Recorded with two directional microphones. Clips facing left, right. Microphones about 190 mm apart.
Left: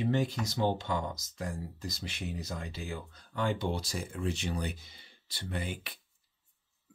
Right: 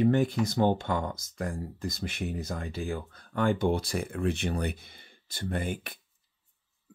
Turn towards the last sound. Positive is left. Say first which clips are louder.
# right 5 dB
turn(degrees=-50)  # may be behind; listen again after turning